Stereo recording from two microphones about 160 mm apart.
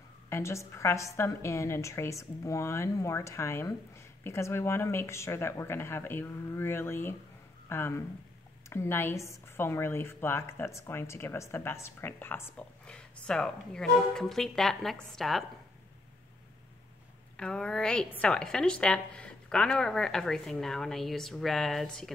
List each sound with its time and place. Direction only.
0.3 s a woman's voice: 15° left (ahead or behind); by 15.4 s centre (ahead or behind)
17.4 s a woman's voice: 5° left (ahead or behind)